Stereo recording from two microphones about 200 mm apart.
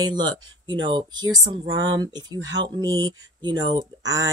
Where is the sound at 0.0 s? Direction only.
20° right (ahead or behind).